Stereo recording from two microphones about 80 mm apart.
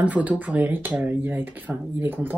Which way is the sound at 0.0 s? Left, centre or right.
Centre.